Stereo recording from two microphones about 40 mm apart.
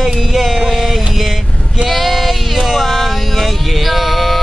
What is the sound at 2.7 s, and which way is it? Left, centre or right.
Music, centre.